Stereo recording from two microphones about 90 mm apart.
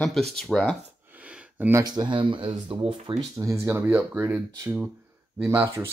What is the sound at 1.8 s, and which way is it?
Speech, 55° right (ahead or behind).